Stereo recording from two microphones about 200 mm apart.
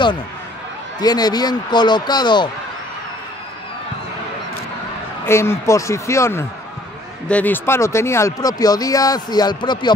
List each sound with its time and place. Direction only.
0.9 s speech: 20° left (ahead or behind)
5.2 s speech: 15° left (ahead or behind)